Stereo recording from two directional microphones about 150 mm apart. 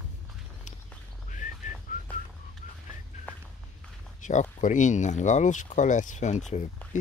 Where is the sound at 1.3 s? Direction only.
55° left (ahead or behind).